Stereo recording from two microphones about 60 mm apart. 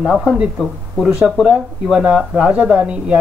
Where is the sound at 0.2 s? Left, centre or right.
Centre.